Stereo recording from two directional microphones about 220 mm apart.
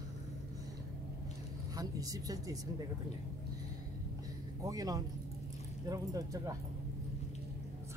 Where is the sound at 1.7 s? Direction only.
15° right (ahead or behind).